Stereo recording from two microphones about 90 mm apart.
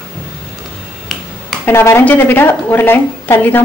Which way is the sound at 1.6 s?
25° left (ahead or behind).